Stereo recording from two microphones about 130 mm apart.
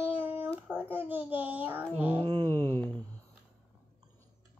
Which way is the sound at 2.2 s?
30° right (ahead or behind).